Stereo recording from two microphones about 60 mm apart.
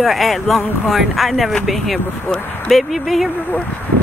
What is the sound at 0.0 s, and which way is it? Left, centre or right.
Speech, centre.